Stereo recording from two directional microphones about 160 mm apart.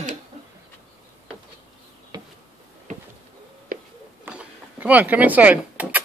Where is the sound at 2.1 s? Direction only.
25° right (ahead or behind).